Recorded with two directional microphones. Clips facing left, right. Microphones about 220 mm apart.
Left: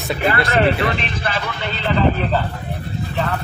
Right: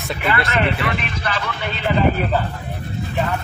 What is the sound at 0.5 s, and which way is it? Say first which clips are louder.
Speech: left 4 dB; 35° left (ahead or behind).